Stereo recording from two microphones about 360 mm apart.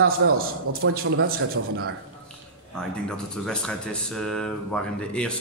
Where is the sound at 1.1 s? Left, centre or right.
Right.